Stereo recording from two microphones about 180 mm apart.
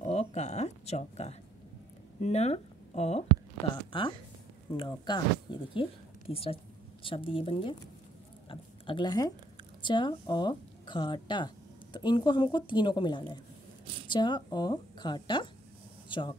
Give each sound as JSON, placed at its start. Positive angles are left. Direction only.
{"t": 0.0, "sound": "speech", "side_deg": 35}
{"t": 8.5, "sound": "a sound", "side_deg": 25}
{"t": 9.8, "sound": "a woman's voice", "side_deg": 25}